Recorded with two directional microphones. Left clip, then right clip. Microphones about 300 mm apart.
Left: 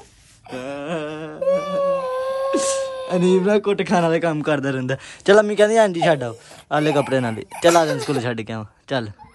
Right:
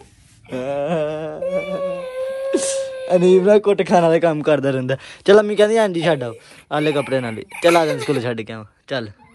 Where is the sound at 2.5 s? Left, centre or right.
Centre.